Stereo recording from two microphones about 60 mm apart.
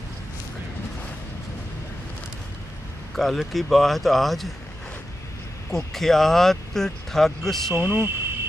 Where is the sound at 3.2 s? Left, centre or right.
Centre.